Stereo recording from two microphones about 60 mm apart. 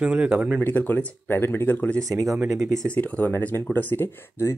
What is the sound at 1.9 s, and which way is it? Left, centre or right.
Speech, right.